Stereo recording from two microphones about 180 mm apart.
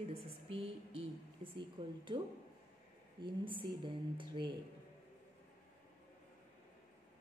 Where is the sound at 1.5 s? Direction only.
25° right (ahead or behind).